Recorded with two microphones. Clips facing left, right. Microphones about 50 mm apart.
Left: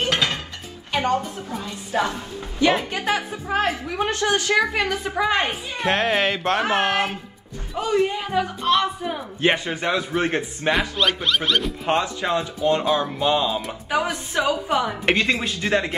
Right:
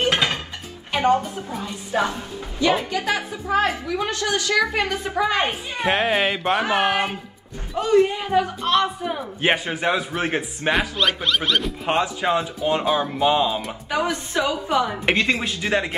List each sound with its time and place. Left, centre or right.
0.0 s music: right
0.9 s speech: centre
1.5 s a man's voice: centre
2.9 s a woman's voice: left
4.7 s a woman's voice: centre
5.8 s a man's voice: centre
9.4 s a man's voice: centre
12.0 s speech: centre
13.8 s a woman's voice: centre